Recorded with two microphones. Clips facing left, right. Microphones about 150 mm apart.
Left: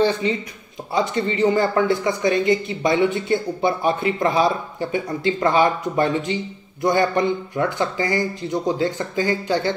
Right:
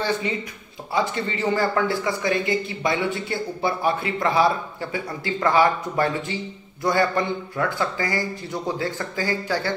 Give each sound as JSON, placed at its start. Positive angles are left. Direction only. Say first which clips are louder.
{"t": 0.2, "sound": "speech", "louder": "left 4 dB", "side_deg": 20}